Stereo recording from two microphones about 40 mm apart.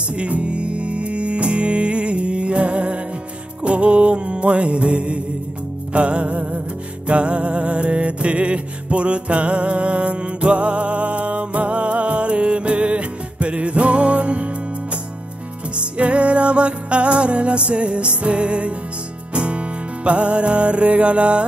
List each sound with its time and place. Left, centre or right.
0.1 s music: right